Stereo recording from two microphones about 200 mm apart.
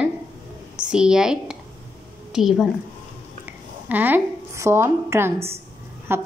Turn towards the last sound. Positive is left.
turn(degrees=-10)  # may be behind; listen again after turning